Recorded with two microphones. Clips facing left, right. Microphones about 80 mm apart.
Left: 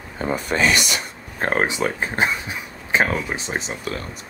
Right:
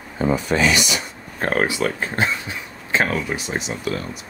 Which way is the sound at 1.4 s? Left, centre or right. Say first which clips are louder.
Right 1 dB; left.